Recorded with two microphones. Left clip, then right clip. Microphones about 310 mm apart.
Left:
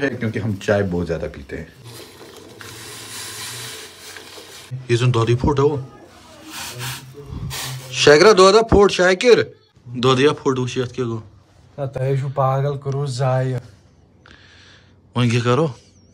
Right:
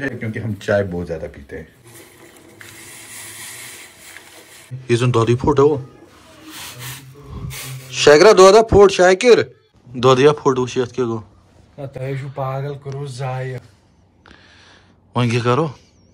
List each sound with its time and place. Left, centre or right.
0.0 s speech: centre
4.8 s speech: centre
7.9 s speech: centre
11.9 s speech: left
14.2 s a sound: centre